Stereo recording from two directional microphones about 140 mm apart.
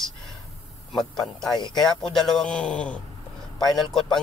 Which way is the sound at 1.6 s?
30° left (ahead or behind).